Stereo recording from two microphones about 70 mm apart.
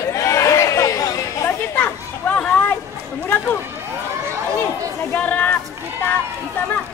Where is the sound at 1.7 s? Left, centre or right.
Left.